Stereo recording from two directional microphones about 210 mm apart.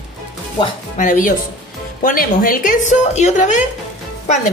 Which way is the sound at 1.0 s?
40° left (ahead or behind).